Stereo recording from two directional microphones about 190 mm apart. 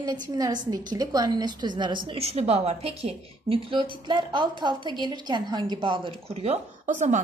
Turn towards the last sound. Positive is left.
turn(degrees=-40)  # may be behind; listen again after turning